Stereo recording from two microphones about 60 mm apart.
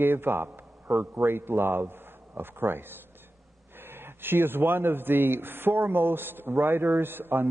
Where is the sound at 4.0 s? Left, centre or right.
Right.